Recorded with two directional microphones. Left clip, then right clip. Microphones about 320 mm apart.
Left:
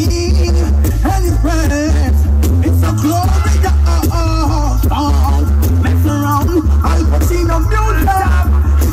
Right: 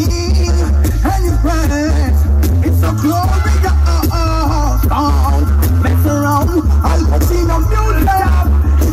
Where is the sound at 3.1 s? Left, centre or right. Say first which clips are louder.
Even; centre.